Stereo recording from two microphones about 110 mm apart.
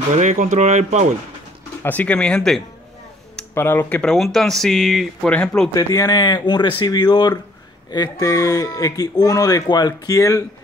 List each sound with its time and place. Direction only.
0.1 s speech: 90° right
1.8 s speech: 15° left (ahead or behind)
3.5 s speech: 20° left (ahead or behind)
4.0 s speech: centre (ahead or behind)
5.3 s speech: 10° left (ahead or behind)
5.7 s speech: 30° left (ahead or behind)